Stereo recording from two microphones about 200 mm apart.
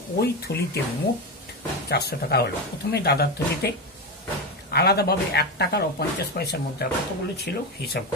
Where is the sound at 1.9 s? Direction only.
55° left (ahead or behind).